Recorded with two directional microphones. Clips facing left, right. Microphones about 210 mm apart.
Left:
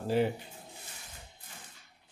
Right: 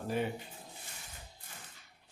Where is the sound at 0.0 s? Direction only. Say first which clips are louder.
Left 6 dB; 30° left (ahead or behind).